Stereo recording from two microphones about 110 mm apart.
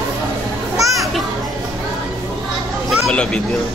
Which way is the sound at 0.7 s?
30° right (ahead or behind).